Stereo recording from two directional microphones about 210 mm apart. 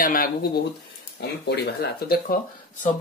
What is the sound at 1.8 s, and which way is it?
Speech, 45° left (ahead or behind).